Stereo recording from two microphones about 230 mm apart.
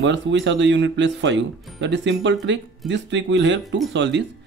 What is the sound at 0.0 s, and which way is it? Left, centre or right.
Speech, right.